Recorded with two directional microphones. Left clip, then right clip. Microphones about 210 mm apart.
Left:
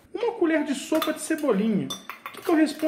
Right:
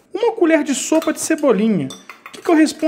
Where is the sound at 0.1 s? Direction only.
50° right (ahead or behind).